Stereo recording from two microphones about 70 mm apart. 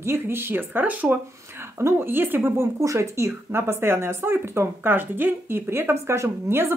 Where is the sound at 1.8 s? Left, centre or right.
Right.